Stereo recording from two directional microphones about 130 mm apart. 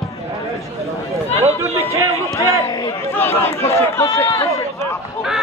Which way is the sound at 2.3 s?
20° left (ahead or behind).